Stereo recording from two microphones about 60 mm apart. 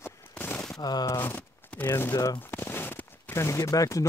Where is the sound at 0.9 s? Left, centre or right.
Left.